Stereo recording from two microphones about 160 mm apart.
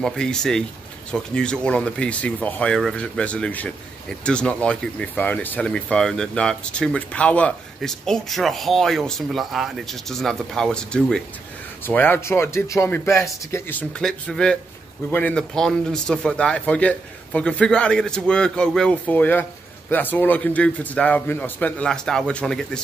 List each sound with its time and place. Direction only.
0.0 s speech: 5° left (ahead or behind)